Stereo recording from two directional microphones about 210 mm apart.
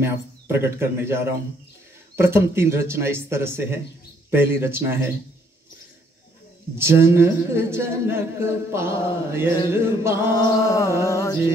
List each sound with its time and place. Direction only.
0.0 s speech: 10° right (ahead or behind)
6.8 s speech: 10° right (ahead or behind)
10.3 s a sound: 20° left (ahead or behind)